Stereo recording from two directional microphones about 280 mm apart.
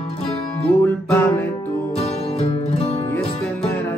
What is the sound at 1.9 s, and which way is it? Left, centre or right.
Music, left.